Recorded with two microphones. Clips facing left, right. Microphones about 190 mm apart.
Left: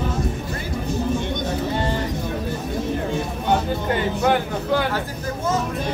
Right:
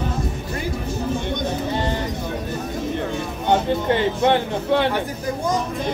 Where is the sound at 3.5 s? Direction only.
25° right (ahead or behind).